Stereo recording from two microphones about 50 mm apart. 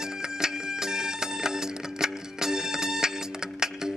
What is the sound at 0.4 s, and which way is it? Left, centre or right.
Music, centre.